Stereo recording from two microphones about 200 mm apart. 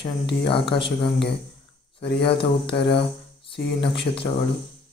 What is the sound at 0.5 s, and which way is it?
Speech, 25° left (ahead or behind).